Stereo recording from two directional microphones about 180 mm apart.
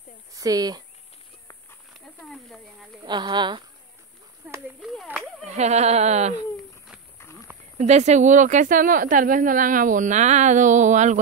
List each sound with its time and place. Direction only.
0.3 s speech: 20° right (ahead or behind)
2.0 s snake: centre (ahead or behind)
3.0 s speech: 25° right (ahead or behind)
4.4 s a sound: 10° right (ahead or behind)
5.5 s speech: 40° right (ahead or behind)
7.7 s a woman's voice: 40° right (ahead or behind)